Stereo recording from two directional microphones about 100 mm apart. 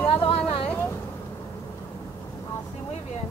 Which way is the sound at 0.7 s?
20° left (ahead or behind).